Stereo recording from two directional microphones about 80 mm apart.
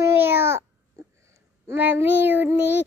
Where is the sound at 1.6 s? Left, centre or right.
Right.